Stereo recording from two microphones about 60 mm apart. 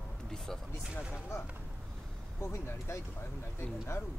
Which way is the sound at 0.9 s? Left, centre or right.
Left.